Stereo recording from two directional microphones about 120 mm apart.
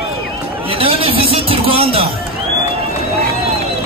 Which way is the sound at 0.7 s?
50° right (ahead or behind).